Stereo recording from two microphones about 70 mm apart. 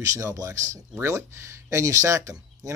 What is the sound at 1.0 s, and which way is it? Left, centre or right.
Speech, right.